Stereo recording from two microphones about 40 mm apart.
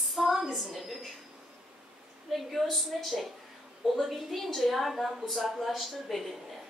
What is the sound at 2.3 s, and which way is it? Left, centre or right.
A woman's voice, centre.